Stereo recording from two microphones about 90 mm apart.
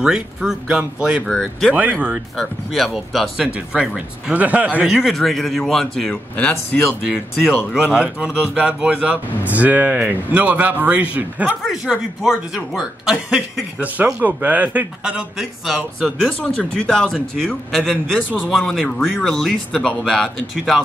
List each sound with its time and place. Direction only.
0.0 s speech: 5° right (ahead or behind)
1.2 s a man's voice: 5° left (ahead or behind)
6.3 s a man's voice: 15° left (ahead or behind)
6.8 s speech: 5° right (ahead or behind)
11.6 s speech: 5° right (ahead or behind)
14.2 s speech: 15° right (ahead or behind)
16.5 s a man's voice: 10° left (ahead or behind)